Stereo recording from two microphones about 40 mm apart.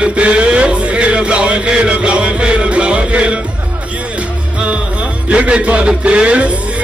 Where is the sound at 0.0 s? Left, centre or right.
Right.